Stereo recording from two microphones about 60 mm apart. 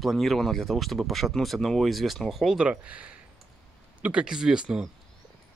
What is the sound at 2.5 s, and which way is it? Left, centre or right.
Speech, right.